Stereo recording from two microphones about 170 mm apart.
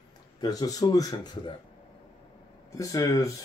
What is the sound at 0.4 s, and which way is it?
Speech, 20° left (ahead or behind).